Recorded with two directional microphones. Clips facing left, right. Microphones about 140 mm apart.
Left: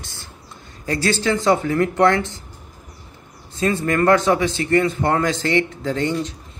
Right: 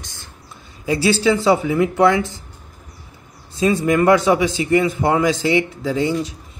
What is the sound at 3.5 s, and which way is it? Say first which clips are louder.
A man's voice: right 3 dB; 15° right (ahead or behind).